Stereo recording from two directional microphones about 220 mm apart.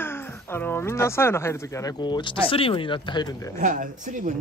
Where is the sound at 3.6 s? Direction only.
35° right (ahead or behind).